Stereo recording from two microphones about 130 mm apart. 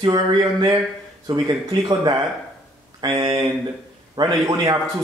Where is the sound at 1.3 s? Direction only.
30° right (ahead or behind).